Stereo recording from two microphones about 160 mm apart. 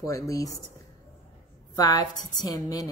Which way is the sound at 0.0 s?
20° left (ahead or behind).